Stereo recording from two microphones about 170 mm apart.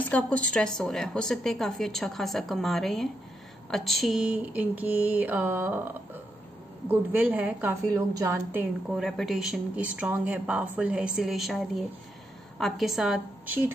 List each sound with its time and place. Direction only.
0.0 s a woman's voice: 10° left (ahead or behind)
3.7 s mantra: centre (ahead or behind)
7.9 s a woman's voice: 20° right (ahead or behind)
8.9 s a woman's voice: centre (ahead or behind)